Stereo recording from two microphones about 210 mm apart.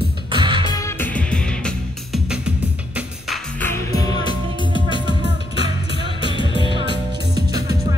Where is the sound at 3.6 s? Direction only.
15° left (ahead or behind).